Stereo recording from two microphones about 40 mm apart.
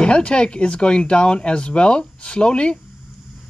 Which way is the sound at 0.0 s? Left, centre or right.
Left.